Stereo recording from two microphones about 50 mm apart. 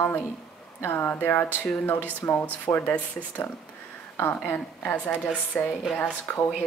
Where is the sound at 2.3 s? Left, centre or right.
Left.